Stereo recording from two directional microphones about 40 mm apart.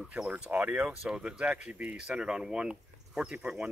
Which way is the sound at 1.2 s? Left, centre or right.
Right.